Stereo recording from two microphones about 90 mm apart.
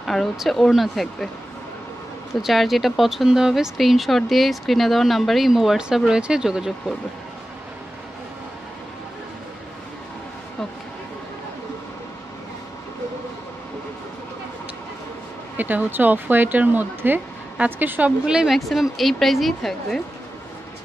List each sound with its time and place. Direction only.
0.0 s speech: centre (ahead or behind)
2.4 s speech: centre (ahead or behind)
15.5 s speech: 20° right (ahead or behind); by 20.0 s centre (ahead or behind)